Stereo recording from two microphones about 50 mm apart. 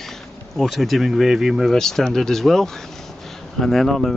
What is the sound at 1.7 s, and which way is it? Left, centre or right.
Speech, centre.